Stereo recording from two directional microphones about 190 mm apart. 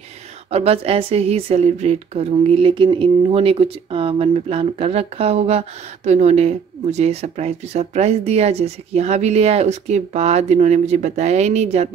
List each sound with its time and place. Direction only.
0.5 s speech: 35° right (ahead or behind)